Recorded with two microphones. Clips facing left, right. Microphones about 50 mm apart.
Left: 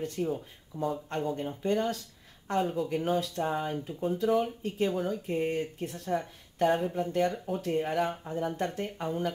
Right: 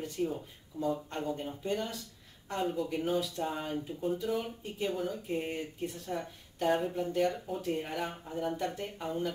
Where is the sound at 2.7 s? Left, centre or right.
Left.